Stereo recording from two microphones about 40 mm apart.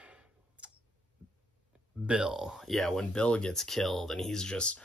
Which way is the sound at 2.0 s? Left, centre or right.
Centre.